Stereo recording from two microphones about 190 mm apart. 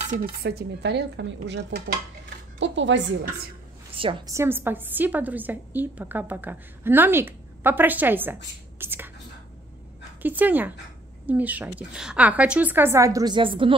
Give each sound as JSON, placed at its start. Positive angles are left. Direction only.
{"t": 0.1, "sound": "speech", "side_deg": -50}
{"t": 2.6, "sound": "speech", "side_deg": -70}
{"t": 3.9, "sound": "a sound", "side_deg": -30}
{"t": 4.3, "sound": "a woman's voice", "side_deg": -15}
{"t": 8.7, "sound": "whispering", "side_deg": -10}
{"t": 10.2, "sound": "a woman's voice", "side_deg": -10}